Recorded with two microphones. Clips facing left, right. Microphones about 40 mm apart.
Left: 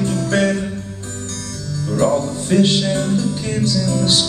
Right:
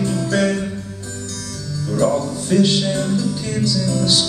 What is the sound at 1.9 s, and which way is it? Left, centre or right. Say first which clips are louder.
Music: left 1 dB; left.